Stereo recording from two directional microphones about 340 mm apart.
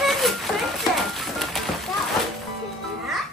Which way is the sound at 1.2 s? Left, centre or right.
Centre.